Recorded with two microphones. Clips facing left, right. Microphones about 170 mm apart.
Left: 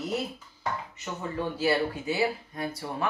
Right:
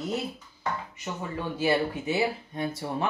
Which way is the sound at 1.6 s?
20° right (ahead or behind).